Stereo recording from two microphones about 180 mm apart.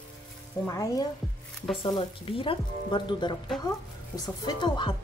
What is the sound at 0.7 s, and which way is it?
Speech, 20° left (ahead or behind).